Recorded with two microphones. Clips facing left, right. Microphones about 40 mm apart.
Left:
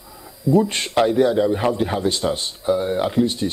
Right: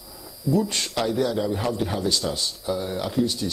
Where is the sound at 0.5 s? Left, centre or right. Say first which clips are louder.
Left 6 dB; left.